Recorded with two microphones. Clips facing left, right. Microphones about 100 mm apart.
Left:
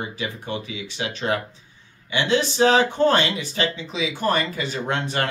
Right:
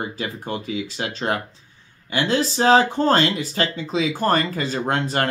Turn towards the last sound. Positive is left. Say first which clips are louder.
# right 3 dB
turn(degrees=-35)  # may be behind; listen again after turning